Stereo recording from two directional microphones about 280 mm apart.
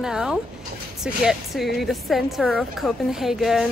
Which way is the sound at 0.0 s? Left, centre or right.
Centre.